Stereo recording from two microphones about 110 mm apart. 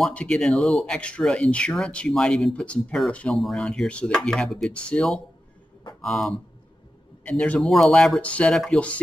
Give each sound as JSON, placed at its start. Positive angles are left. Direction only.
{"t": 0.0, "sound": "speech", "side_deg": 10}